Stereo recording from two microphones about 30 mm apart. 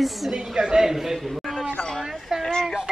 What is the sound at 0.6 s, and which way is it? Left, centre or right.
Speech, right.